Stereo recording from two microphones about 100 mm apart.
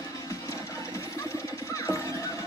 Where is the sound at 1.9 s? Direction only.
25° left (ahead or behind).